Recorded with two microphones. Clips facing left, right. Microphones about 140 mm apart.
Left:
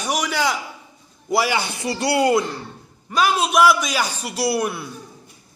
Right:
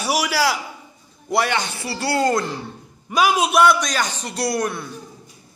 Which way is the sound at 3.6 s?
5° left (ahead or behind).